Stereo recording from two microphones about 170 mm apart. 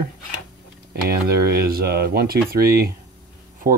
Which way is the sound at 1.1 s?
65° right (ahead or behind).